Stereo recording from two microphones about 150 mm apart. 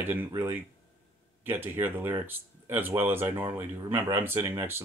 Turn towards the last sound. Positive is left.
turn(degrees=-15)  # may be behind; listen again after turning